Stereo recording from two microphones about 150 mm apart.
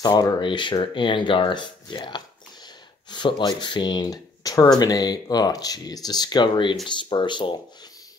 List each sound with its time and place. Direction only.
0.0 s speech: 25° left (ahead or behind)